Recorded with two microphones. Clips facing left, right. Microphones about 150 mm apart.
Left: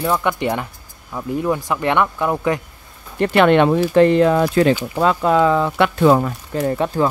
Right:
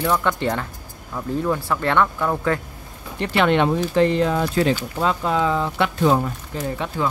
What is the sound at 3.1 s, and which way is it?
Speech, 55° left (ahead or behind).